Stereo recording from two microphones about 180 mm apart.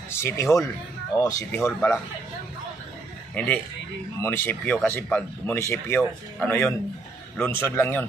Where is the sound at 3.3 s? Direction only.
5° left (ahead or behind).